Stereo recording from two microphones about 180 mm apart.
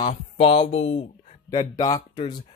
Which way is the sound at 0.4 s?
35° left (ahead or behind).